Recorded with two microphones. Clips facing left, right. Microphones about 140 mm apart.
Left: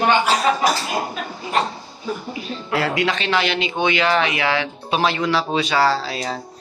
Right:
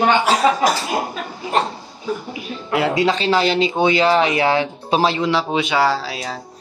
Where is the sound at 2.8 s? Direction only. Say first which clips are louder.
Right 4 dB; 25° right (ahead or behind); by 6.3 s 10° right (ahead or behind).